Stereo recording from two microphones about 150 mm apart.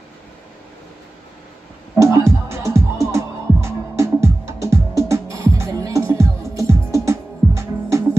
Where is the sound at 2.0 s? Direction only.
20° right (ahead or behind).